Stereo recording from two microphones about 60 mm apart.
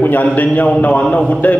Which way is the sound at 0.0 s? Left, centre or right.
Left.